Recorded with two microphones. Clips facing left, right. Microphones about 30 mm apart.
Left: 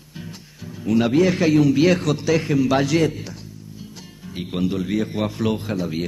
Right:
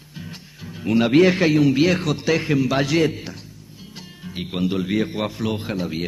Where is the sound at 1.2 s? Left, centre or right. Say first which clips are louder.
Right 1 dB; right.